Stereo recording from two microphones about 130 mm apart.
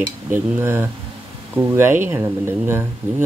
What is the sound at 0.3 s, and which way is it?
Speech, 20° right (ahead or behind).